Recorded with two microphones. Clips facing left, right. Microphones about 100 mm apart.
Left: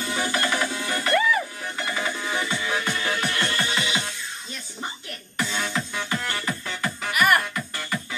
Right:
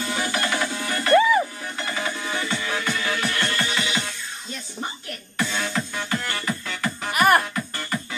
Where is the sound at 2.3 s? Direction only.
10° left (ahead or behind).